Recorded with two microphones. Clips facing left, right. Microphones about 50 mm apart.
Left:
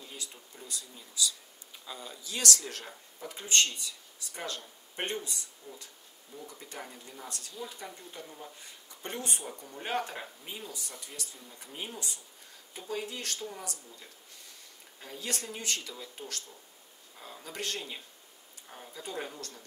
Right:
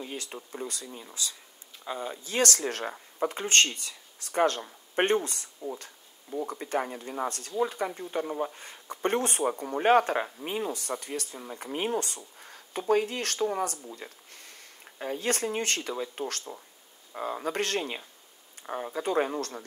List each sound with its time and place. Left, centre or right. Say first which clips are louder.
0.0 s speech: right 8 dB; right